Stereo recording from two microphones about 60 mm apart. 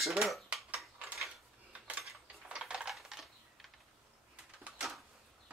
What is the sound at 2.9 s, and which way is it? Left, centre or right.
Typing, centre.